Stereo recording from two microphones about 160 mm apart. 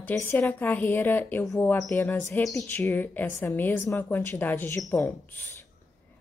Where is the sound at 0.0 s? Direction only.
15° left (ahead or behind).